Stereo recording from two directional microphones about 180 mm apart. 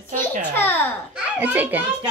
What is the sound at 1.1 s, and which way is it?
Speech, 10° right (ahead or behind).